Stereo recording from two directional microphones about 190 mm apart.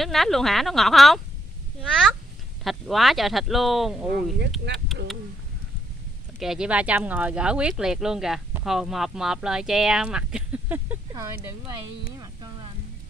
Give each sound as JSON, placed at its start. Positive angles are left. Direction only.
{"t": 0.0, "sound": "a child's voice", "side_deg": 0}
{"t": 6.4, "sound": "speech", "side_deg": -5}
{"t": 12.2, "sound": "a sound", "side_deg": -25}